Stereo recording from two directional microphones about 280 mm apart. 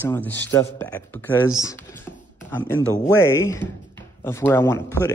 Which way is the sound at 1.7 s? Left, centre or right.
Centre.